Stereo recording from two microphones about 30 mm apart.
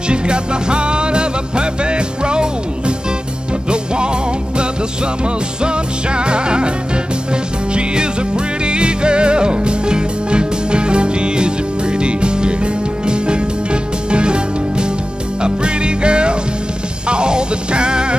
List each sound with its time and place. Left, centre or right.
0.1 s music: right
3.7 s music: right
5.6 s music: right
7.7 s music: right